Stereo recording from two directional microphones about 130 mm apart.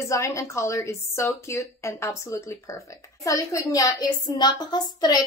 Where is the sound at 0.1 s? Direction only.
25° left (ahead or behind).